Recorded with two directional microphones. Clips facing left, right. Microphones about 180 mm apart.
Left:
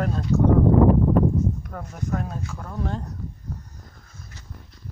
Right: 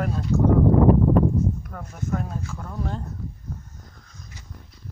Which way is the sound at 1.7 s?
Centre (ahead or behind).